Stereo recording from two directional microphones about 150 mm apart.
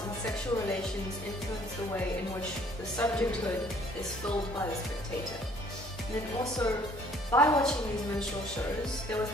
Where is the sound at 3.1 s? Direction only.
10° left (ahead or behind).